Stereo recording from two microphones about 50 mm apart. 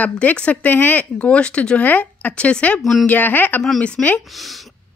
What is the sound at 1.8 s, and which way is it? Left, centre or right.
Speech, left.